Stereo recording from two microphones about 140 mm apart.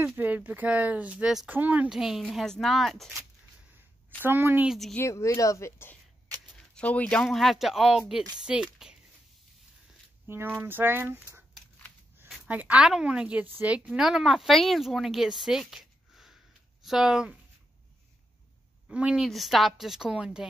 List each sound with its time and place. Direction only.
0.0 s a woman's voice: 15° right (ahead or behind)
4.2 s speech: 15° right (ahead or behind)
4.6 s a woman's voice: centre (ahead or behind)
4.9 s a woman's voice: 20° left (ahead or behind); by 8.9 s 5° right (ahead or behind)
10.2 s a woman's voice: 15° right (ahead or behind)
18.9 s a woman's voice: 5° right (ahead or behind)